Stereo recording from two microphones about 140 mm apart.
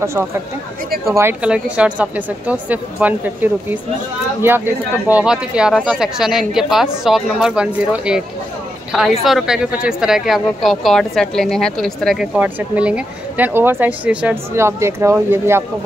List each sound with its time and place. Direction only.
1.1 s speech: 15° right (ahead or behind)
9.2 s speech: 5° right (ahead or behind)
12.4 s speech: 10° right (ahead or behind)